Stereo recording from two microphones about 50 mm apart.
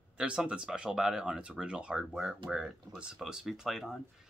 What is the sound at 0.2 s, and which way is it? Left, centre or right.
Speech, right.